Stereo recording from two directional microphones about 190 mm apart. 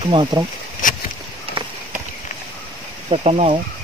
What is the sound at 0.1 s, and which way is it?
Speech, 25° right (ahead or behind).